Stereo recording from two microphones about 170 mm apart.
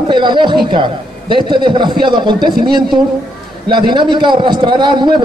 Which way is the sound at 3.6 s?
25° right (ahead or behind).